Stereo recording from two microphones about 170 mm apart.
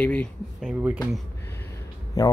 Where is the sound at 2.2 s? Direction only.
20° left (ahead or behind).